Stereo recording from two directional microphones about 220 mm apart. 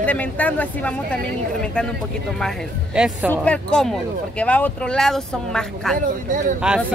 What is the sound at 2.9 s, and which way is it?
Speech, 5° right (ahead or behind).